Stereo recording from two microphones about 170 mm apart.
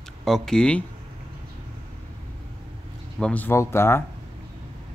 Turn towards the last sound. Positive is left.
turn(degrees=15)  # may be behind; listen again after turning